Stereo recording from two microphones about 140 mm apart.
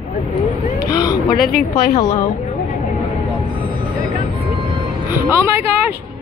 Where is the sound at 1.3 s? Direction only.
90° left.